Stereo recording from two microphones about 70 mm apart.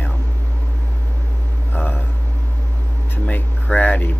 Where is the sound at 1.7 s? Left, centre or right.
Left.